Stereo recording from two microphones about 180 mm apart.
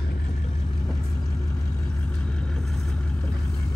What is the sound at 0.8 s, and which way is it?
Vehicle, 10° left (ahead or behind).